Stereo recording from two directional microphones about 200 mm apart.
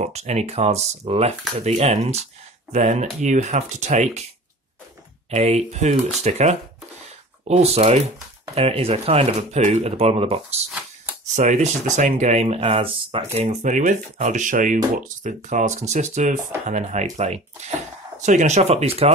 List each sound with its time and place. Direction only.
0.0 s speech: 35° right (ahead or behind)
5.3 s speech: 35° right (ahead or behind)